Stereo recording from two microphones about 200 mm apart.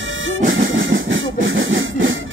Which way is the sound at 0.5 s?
70° right (ahead or behind).